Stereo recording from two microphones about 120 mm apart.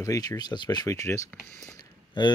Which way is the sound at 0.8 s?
25° left (ahead or behind).